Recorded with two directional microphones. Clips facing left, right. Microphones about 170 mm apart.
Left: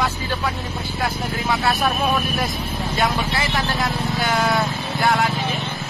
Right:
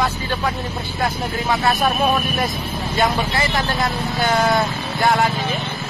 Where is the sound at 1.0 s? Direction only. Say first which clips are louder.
Right 2 dB; centre (ahead or behind).